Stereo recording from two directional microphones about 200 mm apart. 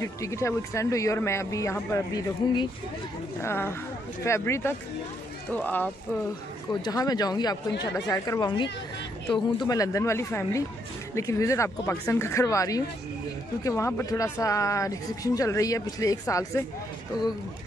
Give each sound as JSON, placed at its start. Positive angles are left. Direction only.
{"t": 0.0, "sound": "speech", "side_deg": 15}
{"t": 6.7, "sound": "speech", "side_deg": 20}